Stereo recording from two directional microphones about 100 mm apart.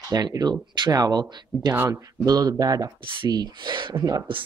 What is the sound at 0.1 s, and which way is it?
Speech, 40° right (ahead or behind).